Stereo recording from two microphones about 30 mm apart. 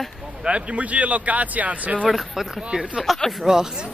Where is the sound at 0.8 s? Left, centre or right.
Right.